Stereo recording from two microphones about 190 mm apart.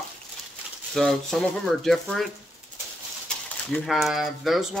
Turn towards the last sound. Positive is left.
turn(degrees=0)  # may be behind; listen again after turning